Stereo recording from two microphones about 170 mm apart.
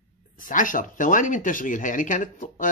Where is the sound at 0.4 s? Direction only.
50° left (ahead or behind).